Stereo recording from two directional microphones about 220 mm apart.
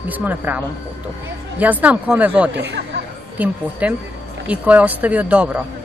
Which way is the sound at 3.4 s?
5° right (ahead or behind).